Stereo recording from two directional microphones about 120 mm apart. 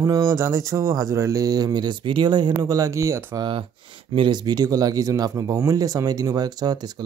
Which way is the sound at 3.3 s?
45° right (ahead or behind).